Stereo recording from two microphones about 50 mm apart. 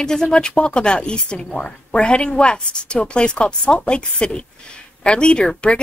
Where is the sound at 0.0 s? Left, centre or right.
Centre.